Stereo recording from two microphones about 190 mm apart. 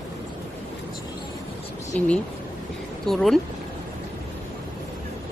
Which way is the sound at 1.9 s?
5° left (ahead or behind).